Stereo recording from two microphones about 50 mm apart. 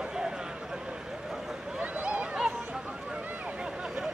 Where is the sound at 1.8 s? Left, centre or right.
Right.